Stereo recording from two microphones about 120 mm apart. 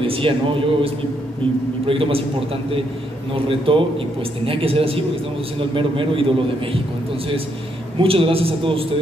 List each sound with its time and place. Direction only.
0.0 s a man's voice: 50° right (ahead or behind)
8.0 s a man's voice: 50° right (ahead or behind)